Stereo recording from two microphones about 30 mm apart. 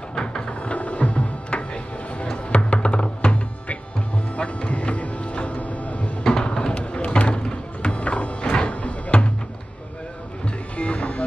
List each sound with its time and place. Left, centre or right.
0.1 s music: left
4.4 s music: left
6.2 s music: left
10.8 s music: left